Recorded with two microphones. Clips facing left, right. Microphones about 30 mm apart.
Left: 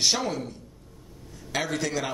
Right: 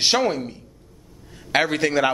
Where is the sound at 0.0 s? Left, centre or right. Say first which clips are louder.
Right 6 dB; right.